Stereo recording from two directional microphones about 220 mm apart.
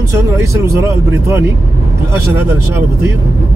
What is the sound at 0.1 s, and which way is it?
Speech, 15° right (ahead or behind).